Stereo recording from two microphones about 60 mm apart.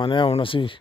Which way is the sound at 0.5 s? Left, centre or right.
Left.